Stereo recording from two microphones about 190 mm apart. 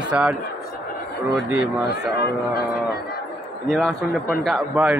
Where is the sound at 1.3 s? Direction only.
5° right (ahead or behind).